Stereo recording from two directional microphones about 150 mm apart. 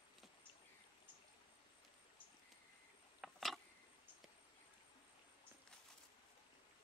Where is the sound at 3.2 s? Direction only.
Centre (ahead or behind).